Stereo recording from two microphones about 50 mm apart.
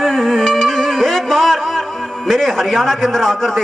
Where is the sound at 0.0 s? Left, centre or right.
Centre.